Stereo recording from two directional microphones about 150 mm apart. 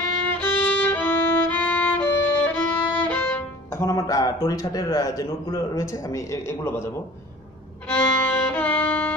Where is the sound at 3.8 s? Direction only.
25° left (ahead or behind).